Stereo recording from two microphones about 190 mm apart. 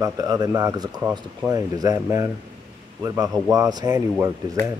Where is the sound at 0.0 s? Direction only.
20° right (ahead or behind).